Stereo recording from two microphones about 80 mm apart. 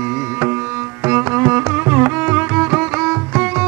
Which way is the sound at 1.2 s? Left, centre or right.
Centre.